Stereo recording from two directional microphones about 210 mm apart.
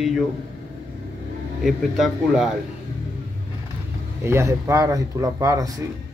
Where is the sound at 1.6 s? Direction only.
Centre (ahead or behind).